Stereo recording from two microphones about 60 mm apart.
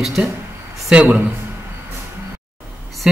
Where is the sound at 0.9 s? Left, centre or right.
Right.